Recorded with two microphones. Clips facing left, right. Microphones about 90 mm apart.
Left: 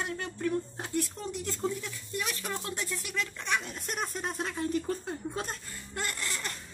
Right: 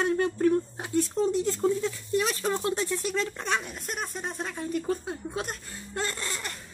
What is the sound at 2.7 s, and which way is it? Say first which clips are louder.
Speech: right 7 dB; 25° right (ahead or behind).